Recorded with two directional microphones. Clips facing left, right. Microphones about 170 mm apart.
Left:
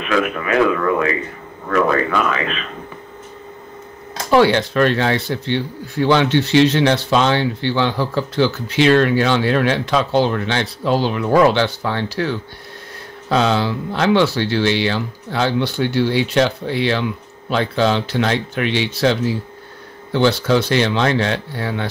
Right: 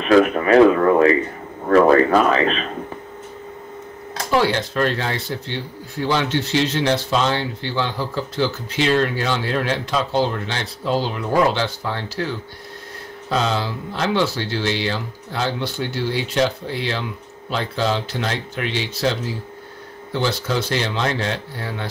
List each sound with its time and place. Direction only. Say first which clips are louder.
0.0 s speech: right 5 dB; 35° right (ahead or behind)
4.3 s speech: left 6 dB; 70° left (ahead or behind)